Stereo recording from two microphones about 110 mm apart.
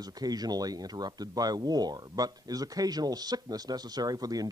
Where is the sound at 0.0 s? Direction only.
35° right (ahead or behind).